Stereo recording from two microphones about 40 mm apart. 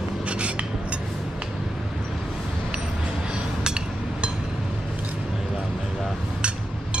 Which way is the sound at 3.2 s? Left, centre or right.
Right.